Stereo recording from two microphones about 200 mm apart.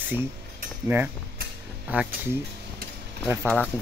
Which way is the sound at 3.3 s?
5° right (ahead or behind).